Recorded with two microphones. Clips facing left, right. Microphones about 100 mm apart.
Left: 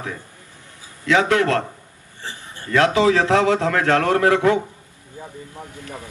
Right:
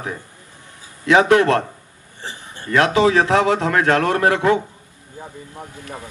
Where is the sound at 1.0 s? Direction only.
20° right (ahead or behind).